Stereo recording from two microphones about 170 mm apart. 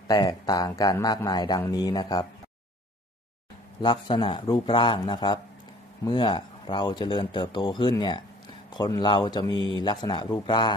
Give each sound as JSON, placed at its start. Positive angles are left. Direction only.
{"t": 0.1, "sound": "speech", "side_deg": 25}
{"t": 3.8, "sound": "speech", "side_deg": 25}